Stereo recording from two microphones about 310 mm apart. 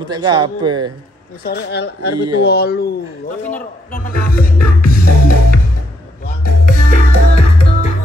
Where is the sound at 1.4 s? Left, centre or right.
Left.